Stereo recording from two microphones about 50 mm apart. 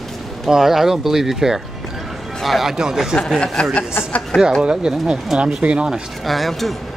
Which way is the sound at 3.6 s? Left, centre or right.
Centre.